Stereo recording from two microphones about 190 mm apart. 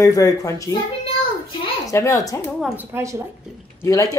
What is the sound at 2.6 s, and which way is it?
Speech, 10° right (ahead or behind).